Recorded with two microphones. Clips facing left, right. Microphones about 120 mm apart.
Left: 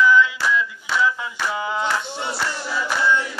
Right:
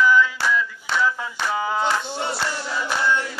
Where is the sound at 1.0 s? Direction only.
40° right (ahead or behind).